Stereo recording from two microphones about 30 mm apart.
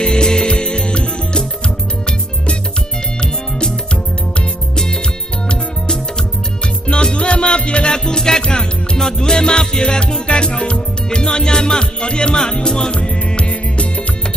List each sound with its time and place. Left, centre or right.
0.0 s music: left
3.2 s music: left
6.9 s music: left
8.0 s music: left
13.5 s music: left